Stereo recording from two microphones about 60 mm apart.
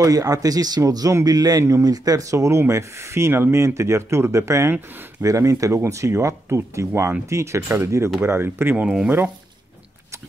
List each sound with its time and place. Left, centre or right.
0.0 s speech: right
1.6 s speech: right
8.2 s speech: right
8.8 s speech: centre